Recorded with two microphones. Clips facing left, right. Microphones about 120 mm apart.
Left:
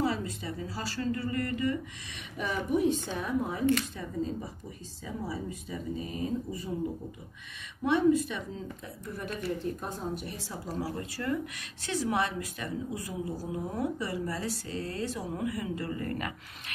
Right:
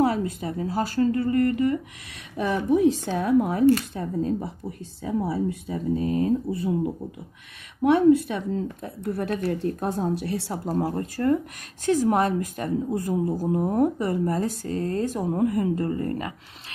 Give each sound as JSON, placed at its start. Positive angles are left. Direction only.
{"t": 0.0, "sound": "a woman's voice", "side_deg": -55}
{"t": 2.4, "sound": "a woman's voice", "side_deg": -90}
{"t": 7.8, "sound": "a woman's voice", "side_deg": -60}